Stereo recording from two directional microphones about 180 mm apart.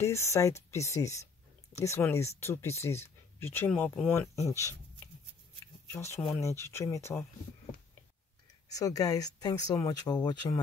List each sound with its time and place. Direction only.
0.0 s speech: 15° left (ahead or behind)
5.9 s speech: 15° left (ahead or behind)
8.6 s speech: 20° left (ahead or behind)